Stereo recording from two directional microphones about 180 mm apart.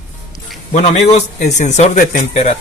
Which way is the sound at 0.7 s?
40° left (ahead or behind).